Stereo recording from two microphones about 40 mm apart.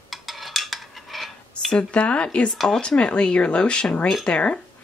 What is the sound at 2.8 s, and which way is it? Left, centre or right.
Speech, left.